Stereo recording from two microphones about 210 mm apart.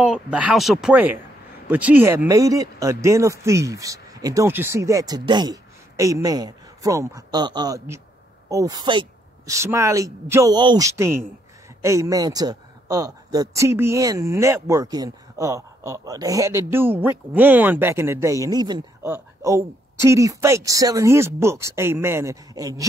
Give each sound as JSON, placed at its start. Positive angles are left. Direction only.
{"t": 0.0, "sound": "speech", "side_deg": -5}